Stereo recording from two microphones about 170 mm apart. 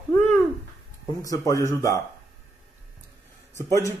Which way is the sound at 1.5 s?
20° left (ahead or behind).